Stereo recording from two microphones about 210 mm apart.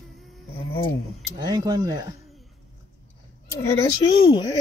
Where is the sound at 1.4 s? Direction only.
20° right (ahead or behind).